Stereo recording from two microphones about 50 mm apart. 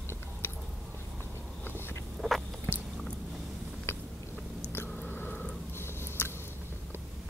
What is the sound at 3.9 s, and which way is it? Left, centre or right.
Biting, left.